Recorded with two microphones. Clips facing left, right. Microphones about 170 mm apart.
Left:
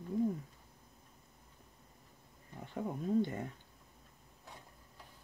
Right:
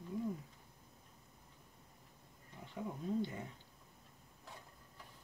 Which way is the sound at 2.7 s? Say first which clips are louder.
Left 6 dB; 50° left (ahead or behind).